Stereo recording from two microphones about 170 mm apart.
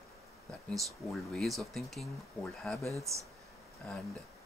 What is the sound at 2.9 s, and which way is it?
Speech, 15° right (ahead or behind).